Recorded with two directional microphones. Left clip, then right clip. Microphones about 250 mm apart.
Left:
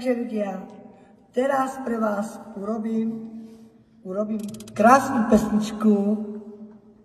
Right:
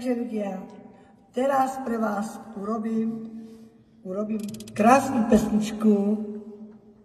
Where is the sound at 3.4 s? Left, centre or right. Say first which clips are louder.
Even; left.